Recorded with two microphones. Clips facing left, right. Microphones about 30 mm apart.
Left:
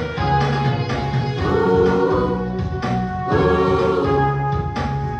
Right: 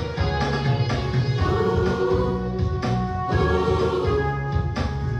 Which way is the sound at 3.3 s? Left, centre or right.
Left.